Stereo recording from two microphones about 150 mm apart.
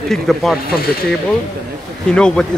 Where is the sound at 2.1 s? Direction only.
5° left (ahead or behind).